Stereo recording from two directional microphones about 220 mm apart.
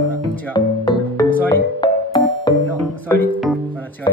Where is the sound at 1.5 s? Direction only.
20° left (ahead or behind).